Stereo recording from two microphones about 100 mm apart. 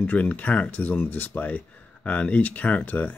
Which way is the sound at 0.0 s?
15° left (ahead or behind).